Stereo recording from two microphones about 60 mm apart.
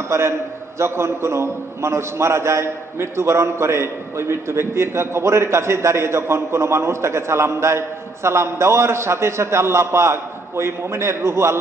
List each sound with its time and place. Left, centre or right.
0.1 s a man's voice: right